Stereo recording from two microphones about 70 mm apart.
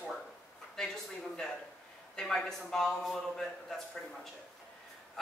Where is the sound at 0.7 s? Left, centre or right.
Centre.